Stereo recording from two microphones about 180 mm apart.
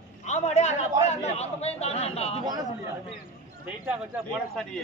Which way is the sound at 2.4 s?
20° right (ahead or behind).